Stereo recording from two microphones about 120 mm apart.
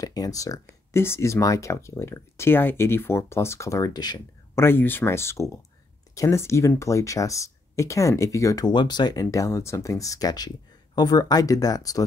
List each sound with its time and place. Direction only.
0.0 s speech: 30° left (ahead or behind)
4.6 s speech: 20° left (ahead or behind)